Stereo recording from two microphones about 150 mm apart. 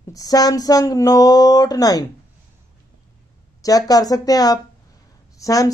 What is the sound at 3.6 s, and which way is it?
A man's voice, 25° left (ahead or behind).